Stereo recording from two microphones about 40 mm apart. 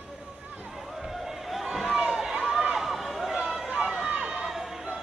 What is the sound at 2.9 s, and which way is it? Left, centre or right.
Run, centre.